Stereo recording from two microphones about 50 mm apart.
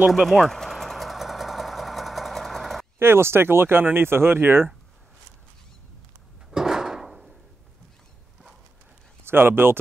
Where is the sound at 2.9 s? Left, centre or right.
Right.